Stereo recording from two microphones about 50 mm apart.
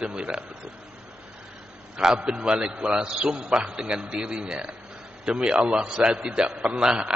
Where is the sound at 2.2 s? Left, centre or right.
Centre.